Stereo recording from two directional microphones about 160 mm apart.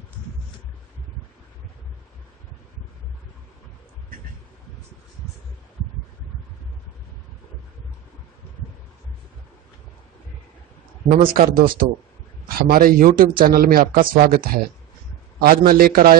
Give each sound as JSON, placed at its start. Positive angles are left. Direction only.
{"t": 11.1, "sound": "a man's voice", "side_deg": -60}